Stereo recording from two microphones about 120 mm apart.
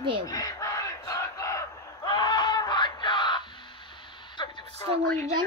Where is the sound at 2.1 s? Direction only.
40° left (ahead or behind).